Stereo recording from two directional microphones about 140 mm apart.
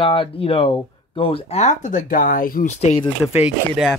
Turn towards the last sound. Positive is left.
turn(degrees=-5)  # may be behind; listen again after turning